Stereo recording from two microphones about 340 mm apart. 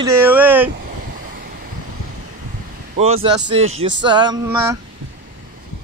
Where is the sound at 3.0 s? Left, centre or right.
Centre.